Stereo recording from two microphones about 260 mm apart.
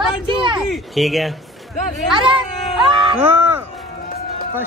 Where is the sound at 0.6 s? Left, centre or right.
Centre.